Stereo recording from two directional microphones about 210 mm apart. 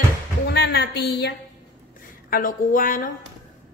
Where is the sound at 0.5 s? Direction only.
50° left (ahead or behind).